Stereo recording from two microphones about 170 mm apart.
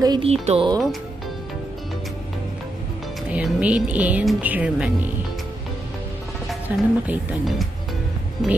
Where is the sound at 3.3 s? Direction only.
10° right (ahead or behind).